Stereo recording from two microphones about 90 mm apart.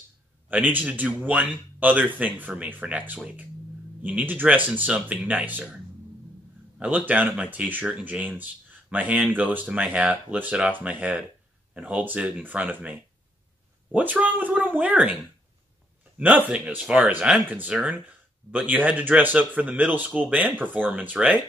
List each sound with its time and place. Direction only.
0.5 s speech: 20° right (ahead or behind)
6.8 s speech: 20° right (ahead or behind)
16.2 s speech: 15° right (ahead or behind)